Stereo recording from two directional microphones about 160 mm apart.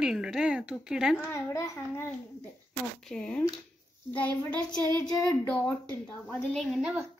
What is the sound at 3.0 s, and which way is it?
A woman's voice, 5° left (ahead or behind).